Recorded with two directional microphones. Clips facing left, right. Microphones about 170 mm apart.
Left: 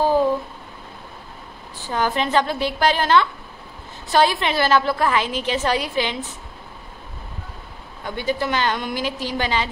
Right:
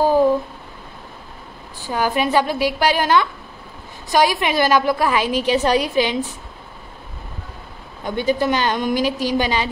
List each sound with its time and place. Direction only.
1.8 s a woman's voice: 10° right (ahead or behind)
8.0 s a woman's voice: 15° right (ahead or behind)